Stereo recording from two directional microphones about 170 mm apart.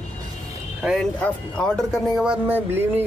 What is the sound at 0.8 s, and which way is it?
A man's voice, centre (ahead or behind).